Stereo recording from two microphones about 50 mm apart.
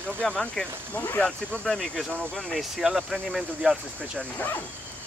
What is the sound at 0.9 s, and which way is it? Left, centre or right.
Speech, left.